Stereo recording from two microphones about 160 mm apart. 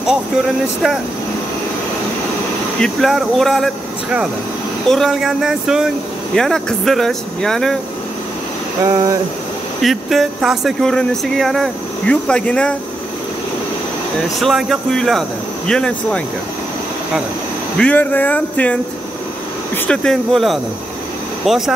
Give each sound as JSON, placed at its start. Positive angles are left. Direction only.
{"t": 2.8, "sound": "speech", "side_deg": 0}
{"t": 8.8, "sound": "a sound", "side_deg": -20}
{"t": 9.8, "sound": "speech", "side_deg": 0}
{"t": 14.4, "sound": "speech", "side_deg": 0}
{"t": 17.7, "sound": "speech", "side_deg": 10}
{"t": 19.9, "sound": "speech", "side_deg": 5}